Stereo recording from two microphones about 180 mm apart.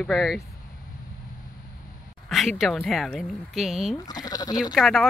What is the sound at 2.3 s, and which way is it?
Speech, centre (ahead or behind).